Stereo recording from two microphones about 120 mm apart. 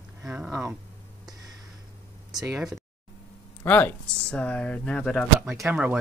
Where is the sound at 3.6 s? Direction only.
15° left (ahead or behind).